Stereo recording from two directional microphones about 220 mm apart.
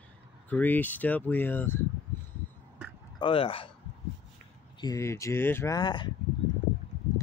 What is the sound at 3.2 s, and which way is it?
Speech, 25° left (ahead or behind).